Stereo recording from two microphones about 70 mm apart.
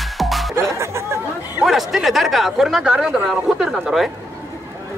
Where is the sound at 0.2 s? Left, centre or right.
Centre.